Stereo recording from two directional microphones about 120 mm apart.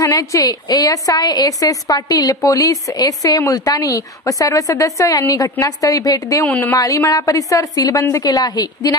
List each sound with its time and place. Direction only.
0.0 s a woman's voice: 25° left (ahead or behind)
6.4 s a woman's voice: 15° left (ahead or behind)
6.7 s a woman's voice: 25° left (ahead or behind)